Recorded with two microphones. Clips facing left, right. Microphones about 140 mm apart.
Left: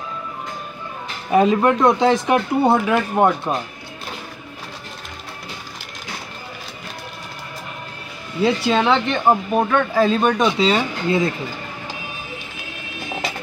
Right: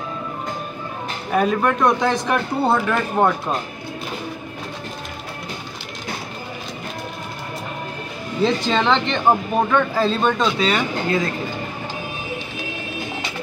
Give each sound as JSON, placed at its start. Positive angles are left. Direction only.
{"t": 1.3, "sound": "speech", "side_deg": 20}
{"t": 2.9, "sound": "speech", "side_deg": 5}
{"t": 8.4, "sound": "speech", "side_deg": 10}
{"t": 10.0, "sound": "speech", "side_deg": 15}